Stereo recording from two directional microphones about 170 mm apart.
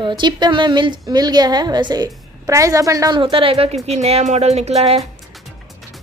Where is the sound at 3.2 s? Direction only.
30° right (ahead or behind).